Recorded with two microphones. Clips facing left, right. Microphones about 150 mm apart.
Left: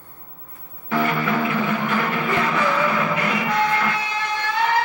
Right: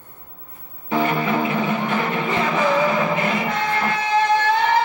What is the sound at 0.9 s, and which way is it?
Music, 20° right (ahead or behind).